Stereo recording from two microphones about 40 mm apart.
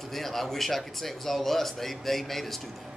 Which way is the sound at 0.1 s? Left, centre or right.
Centre.